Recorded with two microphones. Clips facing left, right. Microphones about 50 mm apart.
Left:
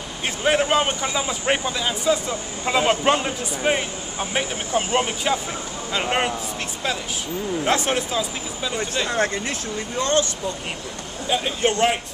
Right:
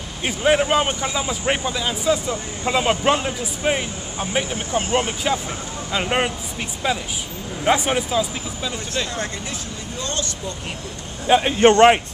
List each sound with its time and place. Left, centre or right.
0.2 s speech: centre
7.6 s speech: centre
9.9 s speech: left
11.2 s a man's voice: right
11.6 s speech: right